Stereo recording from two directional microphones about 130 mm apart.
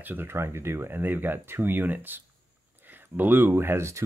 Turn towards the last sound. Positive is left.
turn(degrees=-20)  # may be behind; listen again after turning